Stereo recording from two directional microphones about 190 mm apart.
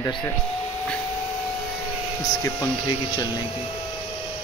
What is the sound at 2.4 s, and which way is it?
Speech, 15° left (ahead or behind).